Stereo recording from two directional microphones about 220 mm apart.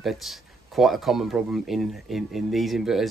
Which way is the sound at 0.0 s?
Centre (ahead or behind).